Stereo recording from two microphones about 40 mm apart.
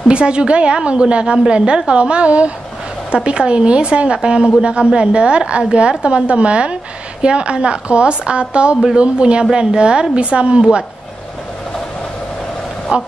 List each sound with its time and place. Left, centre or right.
0.1 s a woman's voice: right
10.6 s speech: centre
12.9 s a woman's voice: right